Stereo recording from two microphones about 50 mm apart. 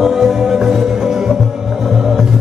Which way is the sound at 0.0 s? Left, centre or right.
Centre.